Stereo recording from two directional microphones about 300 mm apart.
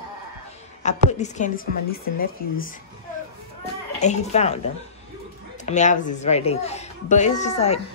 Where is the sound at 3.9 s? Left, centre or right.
Left.